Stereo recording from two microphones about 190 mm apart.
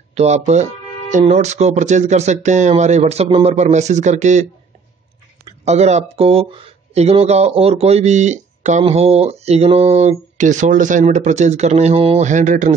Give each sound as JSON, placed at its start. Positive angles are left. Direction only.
{"t": 0.1, "sound": "speech", "side_deg": -35}
{"t": 5.7, "sound": "speech", "side_deg": -35}